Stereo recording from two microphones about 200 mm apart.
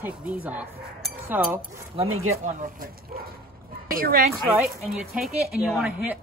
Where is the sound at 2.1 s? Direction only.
90° right.